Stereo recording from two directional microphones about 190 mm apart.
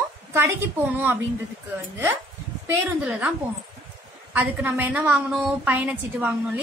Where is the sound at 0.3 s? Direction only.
15° right (ahead or behind).